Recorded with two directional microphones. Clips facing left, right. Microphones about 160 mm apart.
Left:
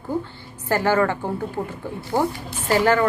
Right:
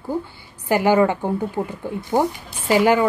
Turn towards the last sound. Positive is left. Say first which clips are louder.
# right 2 dB
turn(degrees=-15)  # may be behind; listen again after turning